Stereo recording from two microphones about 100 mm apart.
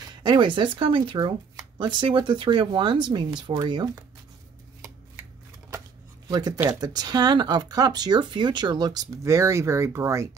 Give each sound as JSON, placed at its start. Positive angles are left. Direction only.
{"t": 0.2, "sound": "speech", "side_deg": -45}
{"t": 6.2, "sound": "speech", "side_deg": -40}